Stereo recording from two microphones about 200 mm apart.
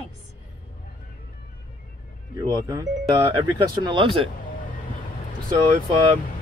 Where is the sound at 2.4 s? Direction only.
20° right (ahead or behind).